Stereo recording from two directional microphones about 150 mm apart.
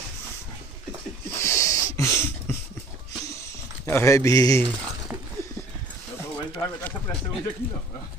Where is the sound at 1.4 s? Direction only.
20° left (ahead or behind).